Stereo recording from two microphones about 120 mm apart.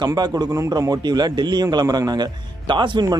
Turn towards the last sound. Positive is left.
turn(degrees=-40)  # may be behind; listen again after turning